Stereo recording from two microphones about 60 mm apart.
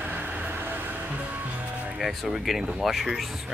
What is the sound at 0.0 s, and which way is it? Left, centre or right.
Music, right.